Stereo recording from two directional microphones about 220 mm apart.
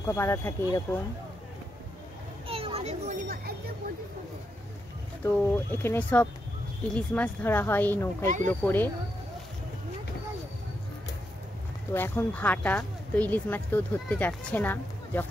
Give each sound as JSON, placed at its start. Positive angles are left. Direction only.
{"t": 0.0, "sound": "speech", "side_deg": 15}
{"t": 2.4, "sound": "children playing", "side_deg": -25}
{"t": 5.2, "sound": "speech", "side_deg": 10}
{"t": 11.9, "sound": "speech", "side_deg": 10}